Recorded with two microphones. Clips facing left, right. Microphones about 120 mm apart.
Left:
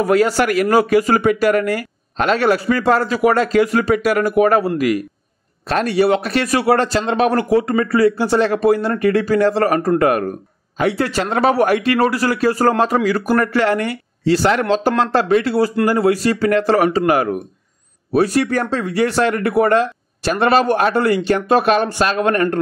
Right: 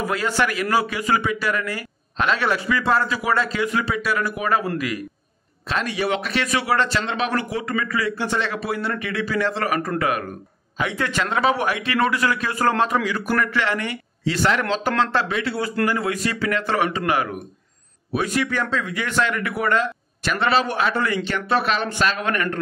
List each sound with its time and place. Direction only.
0.0 s speech: 40° left (ahead or behind)